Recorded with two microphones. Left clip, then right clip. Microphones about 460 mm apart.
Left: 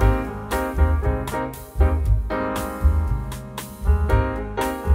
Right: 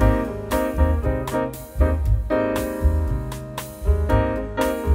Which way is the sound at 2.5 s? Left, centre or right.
Centre.